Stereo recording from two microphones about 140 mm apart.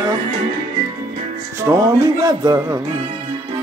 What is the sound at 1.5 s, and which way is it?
Music, 20° right (ahead or behind).